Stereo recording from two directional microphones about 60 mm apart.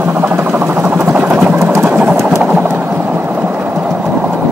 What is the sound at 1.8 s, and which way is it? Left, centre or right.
Sewing machine, right.